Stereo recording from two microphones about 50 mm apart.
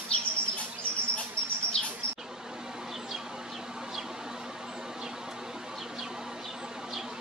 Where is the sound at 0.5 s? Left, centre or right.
Right.